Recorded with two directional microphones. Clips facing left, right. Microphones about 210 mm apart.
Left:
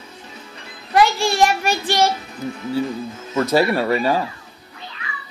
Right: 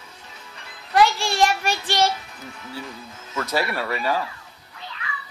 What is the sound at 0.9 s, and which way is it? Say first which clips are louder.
Speech: left 3 dB; 5° left (ahead or behind).